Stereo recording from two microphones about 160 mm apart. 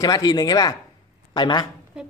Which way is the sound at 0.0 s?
25° left (ahead or behind).